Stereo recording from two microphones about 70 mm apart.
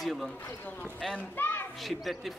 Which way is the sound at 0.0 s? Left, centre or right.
Centre.